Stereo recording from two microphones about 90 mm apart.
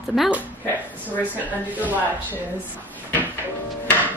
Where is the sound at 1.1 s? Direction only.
20° left (ahead or behind).